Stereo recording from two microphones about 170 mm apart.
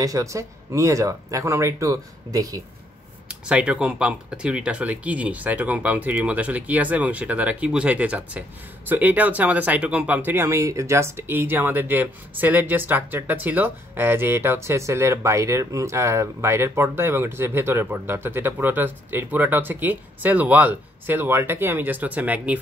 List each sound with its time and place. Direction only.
0.0 s speech: 20° right (ahead or behind)
3.3 s speech: 5° right (ahead or behind)